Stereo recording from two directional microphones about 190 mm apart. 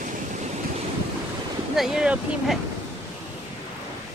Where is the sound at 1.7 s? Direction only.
Centre (ahead or behind).